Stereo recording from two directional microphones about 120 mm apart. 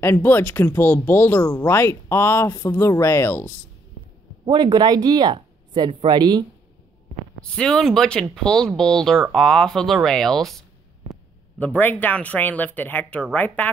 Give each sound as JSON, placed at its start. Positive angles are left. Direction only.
{"t": 0.0, "sound": "speech", "side_deg": 20}
{"t": 4.5, "sound": "speech", "side_deg": -35}
{"t": 7.5, "sound": "speech", "side_deg": 5}
{"t": 11.6, "sound": "speech", "side_deg": 15}